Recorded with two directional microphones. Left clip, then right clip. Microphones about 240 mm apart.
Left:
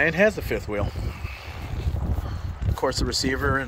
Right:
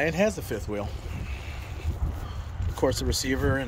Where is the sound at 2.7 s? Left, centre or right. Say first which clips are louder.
Left 1 dB; centre.